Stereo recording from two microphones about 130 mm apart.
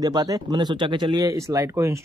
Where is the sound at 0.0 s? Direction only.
30° right (ahead or behind).